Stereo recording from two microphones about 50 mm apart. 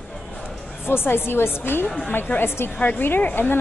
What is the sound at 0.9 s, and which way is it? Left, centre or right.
A woman's voice, left.